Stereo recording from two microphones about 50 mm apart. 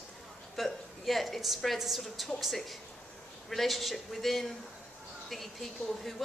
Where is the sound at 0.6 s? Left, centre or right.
Centre.